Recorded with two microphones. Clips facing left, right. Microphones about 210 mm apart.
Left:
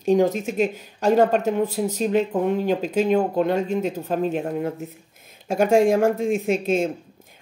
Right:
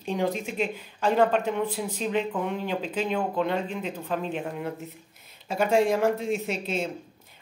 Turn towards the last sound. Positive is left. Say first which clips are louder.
# left 8 dB
turn(degrees=50)  # may be behind; listen again after turning